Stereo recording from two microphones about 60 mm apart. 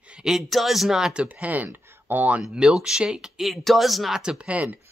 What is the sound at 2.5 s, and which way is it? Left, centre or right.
Speech, centre.